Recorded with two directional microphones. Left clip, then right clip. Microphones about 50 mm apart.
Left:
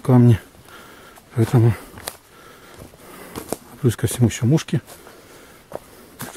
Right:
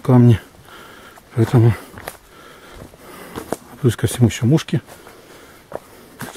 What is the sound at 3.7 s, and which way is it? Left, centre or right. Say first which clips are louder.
Speech: right 2 dB; centre.